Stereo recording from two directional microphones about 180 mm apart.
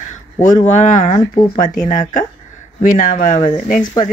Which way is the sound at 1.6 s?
25° left (ahead or behind).